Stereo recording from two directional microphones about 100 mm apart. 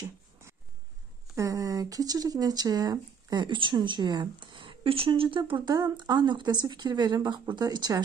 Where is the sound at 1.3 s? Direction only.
30° right (ahead or behind).